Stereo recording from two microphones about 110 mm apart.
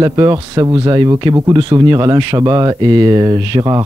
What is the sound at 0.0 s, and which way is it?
Speech, 35° right (ahead or behind).